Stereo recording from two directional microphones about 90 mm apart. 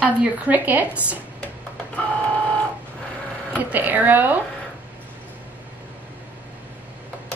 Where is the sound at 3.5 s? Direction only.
20° right (ahead or behind).